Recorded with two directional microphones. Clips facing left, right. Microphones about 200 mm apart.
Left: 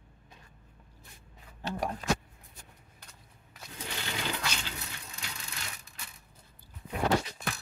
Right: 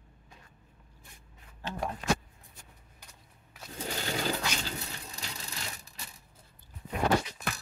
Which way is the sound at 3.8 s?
40° right (ahead or behind).